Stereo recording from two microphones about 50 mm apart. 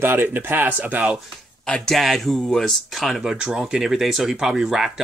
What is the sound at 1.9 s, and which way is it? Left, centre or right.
Speech, centre.